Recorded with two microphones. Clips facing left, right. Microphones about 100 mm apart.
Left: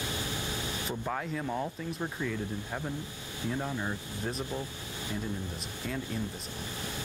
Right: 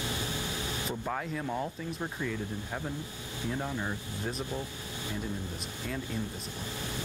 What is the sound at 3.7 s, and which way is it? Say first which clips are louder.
Speech: even; 20° left (ahead or behind).